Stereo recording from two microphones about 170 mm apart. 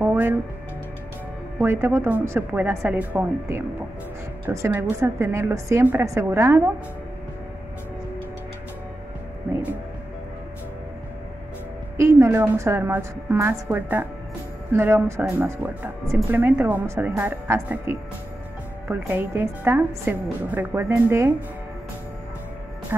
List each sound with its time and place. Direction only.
0.0 s music: 10° right (ahead or behind)
1.6 s a woman's voice: 15° right (ahead or behind)
12.0 s a woman's voice: 15° right (ahead or behind)